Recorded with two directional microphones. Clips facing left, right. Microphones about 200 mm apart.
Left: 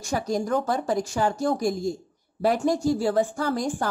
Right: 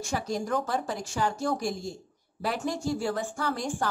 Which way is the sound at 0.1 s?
40° left (ahead or behind).